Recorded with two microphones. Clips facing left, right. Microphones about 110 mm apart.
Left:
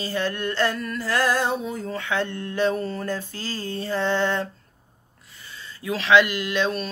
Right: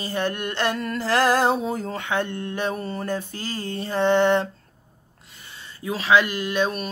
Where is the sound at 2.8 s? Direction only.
20° right (ahead or behind).